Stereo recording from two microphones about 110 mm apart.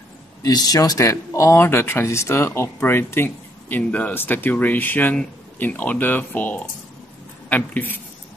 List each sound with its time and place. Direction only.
0.4 s speech: 35° left (ahead or behind); by 8.0 s 15° left (ahead or behind)